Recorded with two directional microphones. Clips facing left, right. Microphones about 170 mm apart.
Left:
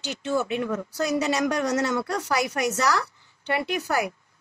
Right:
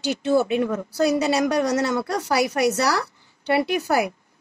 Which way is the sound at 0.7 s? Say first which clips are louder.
Right 5 dB; 35° right (ahead or behind).